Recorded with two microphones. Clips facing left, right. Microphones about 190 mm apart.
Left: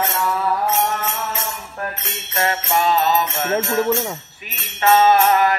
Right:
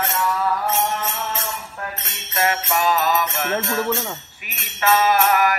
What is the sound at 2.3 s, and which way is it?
Jingle bell, 30° left (ahead or behind).